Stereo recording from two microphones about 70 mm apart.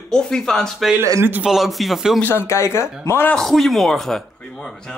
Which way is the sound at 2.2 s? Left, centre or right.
Left.